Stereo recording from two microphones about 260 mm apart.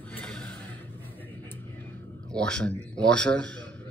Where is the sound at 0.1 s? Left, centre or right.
Centre.